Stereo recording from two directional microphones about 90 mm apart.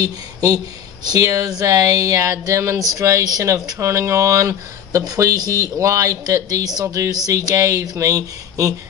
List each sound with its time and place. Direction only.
0.0 s speech: 45° right (ahead or behind)